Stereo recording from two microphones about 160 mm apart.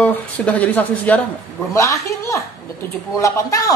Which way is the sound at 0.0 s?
10° left (ahead or behind).